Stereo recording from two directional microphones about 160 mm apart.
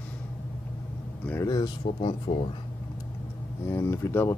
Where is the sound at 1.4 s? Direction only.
25° left (ahead or behind).